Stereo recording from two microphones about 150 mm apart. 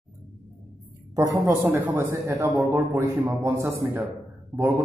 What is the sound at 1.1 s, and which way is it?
A man's voice, 20° right (ahead or behind).